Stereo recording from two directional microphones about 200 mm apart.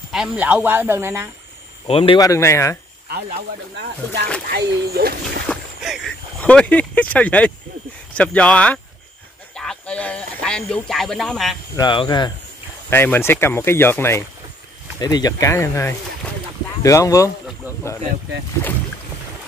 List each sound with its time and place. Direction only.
0.1 s speech: 5° right (ahead or behind)
1.9 s speech: 30° left (ahead or behind)
2.1 s speech: 15° left (ahead or behind)
3.7 s speech: 55° right (ahead or behind)
5.5 s speech: centre (ahead or behind)
11.7 s speech: 25° left (ahead or behind)
12.9 s speech: 10° left (ahead or behind)